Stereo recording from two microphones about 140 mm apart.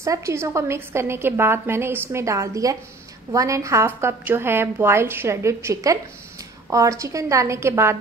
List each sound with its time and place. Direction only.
0.0 s a woman's voice: 20° right (ahead or behind)